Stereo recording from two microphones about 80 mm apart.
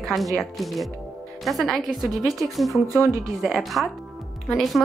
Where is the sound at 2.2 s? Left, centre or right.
Right.